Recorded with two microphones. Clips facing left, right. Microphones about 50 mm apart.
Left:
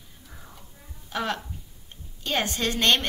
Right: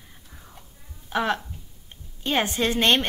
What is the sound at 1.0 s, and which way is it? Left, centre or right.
A woman's voice, right.